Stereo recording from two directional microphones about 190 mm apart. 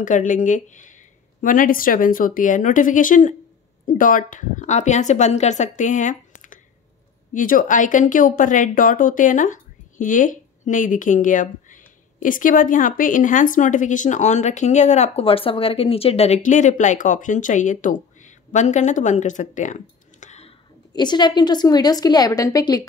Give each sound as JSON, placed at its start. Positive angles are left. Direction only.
{"t": 0.0, "sound": "speech", "side_deg": 40}
{"t": 20.9, "sound": "a woman's voice", "side_deg": 25}